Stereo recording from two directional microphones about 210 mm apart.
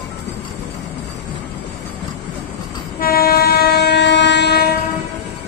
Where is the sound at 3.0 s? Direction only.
45° left (ahead or behind).